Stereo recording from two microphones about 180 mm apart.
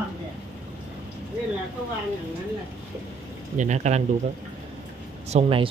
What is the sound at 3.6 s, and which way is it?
Speech, 40° right (ahead or behind).